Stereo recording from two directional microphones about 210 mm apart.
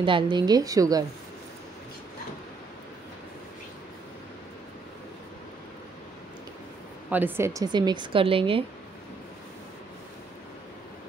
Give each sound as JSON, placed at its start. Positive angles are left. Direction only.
{"t": 0.0, "sound": "speech", "side_deg": -20}
{"t": 7.1, "sound": "speech", "side_deg": -10}